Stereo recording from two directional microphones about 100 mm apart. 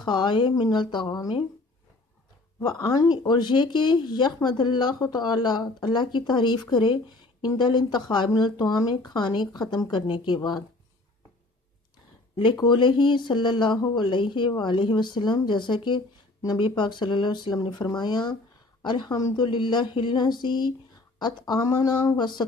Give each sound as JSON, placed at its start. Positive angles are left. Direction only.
{"t": 0.0, "sound": "speech", "side_deg": 50}
{"t": 2.6, "sound": "speech", "side_deg": 40}
{"t": 12.5, "sound": "speech", "side_deg": 50}